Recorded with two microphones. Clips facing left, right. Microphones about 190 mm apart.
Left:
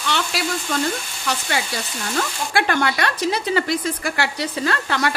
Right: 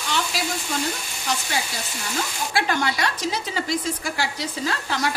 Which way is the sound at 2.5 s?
60° left (ahead or behind).